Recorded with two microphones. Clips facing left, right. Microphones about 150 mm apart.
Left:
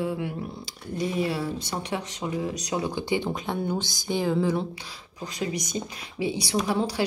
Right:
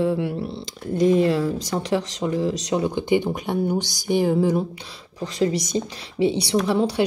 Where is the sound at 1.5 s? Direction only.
90° right.